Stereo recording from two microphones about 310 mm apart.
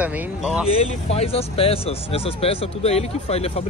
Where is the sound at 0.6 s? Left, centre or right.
Centre.